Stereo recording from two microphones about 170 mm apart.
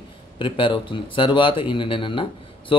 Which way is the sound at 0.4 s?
30° left (ahead or behind).